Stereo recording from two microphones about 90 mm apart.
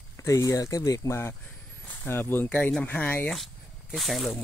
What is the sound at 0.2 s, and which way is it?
Speech, 35° left (ahead or behind).